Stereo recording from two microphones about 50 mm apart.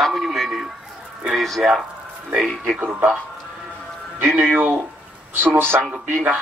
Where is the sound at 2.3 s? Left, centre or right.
Centre.